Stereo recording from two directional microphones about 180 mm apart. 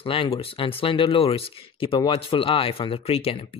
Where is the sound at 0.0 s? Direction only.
30° left (ahead or behind).